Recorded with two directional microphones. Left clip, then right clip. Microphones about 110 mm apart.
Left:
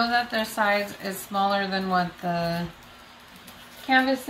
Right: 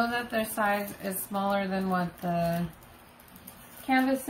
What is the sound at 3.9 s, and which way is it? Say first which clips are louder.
Speech: left 6 dB; 25° right (ahead or behind).